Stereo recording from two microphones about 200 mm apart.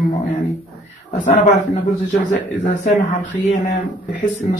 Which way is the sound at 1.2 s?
40° left (ahead or behind).